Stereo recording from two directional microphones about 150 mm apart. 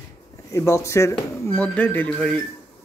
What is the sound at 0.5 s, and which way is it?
Speech, 20° left (ahead or behind).